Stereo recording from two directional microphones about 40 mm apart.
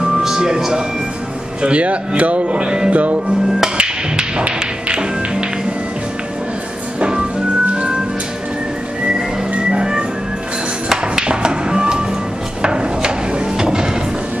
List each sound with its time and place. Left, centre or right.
0.2 s music: centre
1.6 s speech: right
2.9 s speech: right
3.7 s music: right
4.6 s tap: right
7.0 s music: right
9.7 s music: centre
11.2 s music: right
12.6 s a sound: right